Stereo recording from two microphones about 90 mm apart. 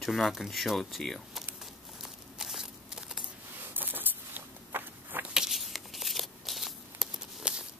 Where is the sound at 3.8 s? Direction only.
20° right (ahead or behind).